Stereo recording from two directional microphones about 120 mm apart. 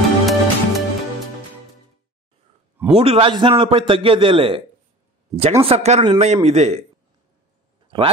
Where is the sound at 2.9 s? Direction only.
50° right (ahead or behind).